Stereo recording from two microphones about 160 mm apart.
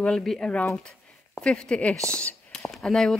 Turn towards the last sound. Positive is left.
turn(degrees=5)  # may be behind; listen again after turning